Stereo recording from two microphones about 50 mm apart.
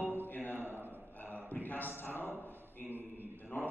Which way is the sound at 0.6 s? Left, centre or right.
Right.